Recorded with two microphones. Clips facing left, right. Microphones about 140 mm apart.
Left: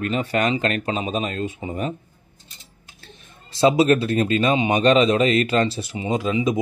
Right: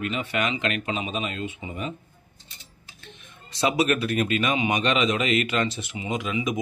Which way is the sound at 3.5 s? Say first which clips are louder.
Left 7 dB; 30° left (ahead or behind).